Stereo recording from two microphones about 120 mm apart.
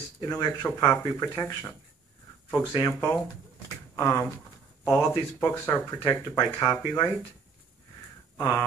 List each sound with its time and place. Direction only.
0.2 s speech: 35° left (ahead or behind)
2.7 s speech: 25° left (ahead or behind)
8.4 s speech: 25° left (ahead or behind)